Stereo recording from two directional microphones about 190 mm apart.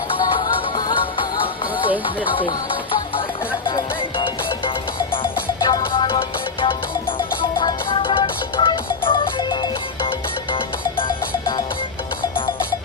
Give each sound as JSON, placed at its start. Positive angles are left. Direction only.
{"t": 0.4, "sound": "music", "side_deg": 20}